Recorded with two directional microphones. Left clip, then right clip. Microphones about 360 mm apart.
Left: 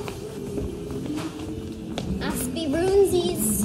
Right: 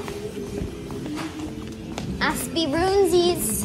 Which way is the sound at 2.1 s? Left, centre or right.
Centre.